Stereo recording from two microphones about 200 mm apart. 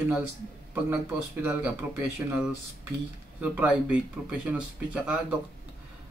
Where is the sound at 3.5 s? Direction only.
5° right (ahead or behind).